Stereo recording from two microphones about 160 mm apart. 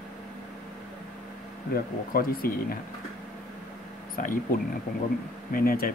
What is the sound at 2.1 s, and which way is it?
Speech, 70° left (ahead or behind).